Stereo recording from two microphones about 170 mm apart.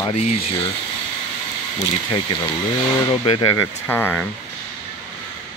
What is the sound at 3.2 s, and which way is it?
Speech, 25° left (ahead or behind).